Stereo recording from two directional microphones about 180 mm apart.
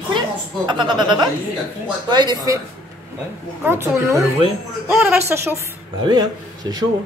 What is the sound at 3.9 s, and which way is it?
A woman's voice, 15° right (ahead or behind).